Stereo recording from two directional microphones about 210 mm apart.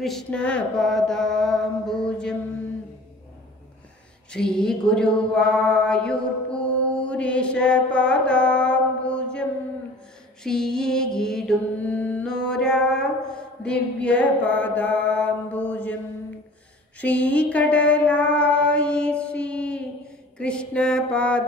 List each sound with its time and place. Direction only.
0.0 s mantra: 5° left (ahead or behind)
4.3 s mantra: 5° left (ahead or behind)
17.0 s mantra: 5° left (ahead or behind)